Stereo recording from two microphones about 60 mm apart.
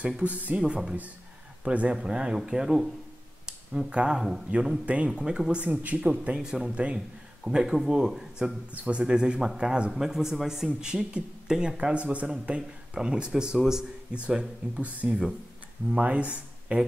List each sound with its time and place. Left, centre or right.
0.2 s speech: right
1.6 s a man's voice: right
7.4 s speech: centre
8.7 s a man's voice: centre